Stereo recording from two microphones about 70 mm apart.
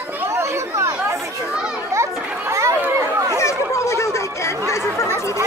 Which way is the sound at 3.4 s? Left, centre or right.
Left.